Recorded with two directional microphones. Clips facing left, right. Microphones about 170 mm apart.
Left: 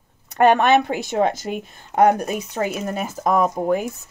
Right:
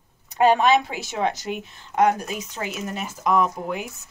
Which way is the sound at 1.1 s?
45° left (ahead or behind).